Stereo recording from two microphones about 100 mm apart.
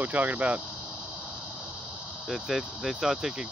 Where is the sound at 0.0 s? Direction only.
15° right (ahead or behind).